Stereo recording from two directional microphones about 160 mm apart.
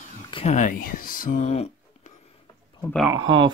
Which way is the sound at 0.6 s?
55° left (ahead or behind).